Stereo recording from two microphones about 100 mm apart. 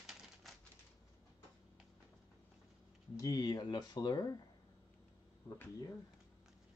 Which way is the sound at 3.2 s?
40° left (ahead or behind).